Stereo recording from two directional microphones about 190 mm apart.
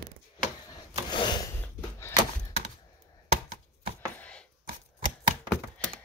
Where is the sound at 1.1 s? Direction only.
25° left (ahead or behind).